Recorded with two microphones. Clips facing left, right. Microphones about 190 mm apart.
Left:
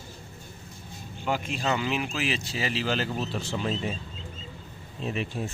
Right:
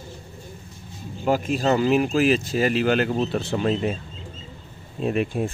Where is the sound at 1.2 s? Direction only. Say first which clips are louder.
Right 8 dB; 40° right (ahead or behind); by 3.9 s 60° right (ahead or behind).